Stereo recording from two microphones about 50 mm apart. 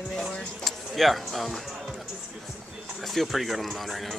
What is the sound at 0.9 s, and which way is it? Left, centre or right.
Speech, centre.